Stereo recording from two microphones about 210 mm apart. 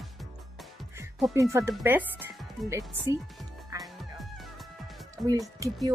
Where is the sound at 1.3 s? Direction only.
15° right (ahead or behind).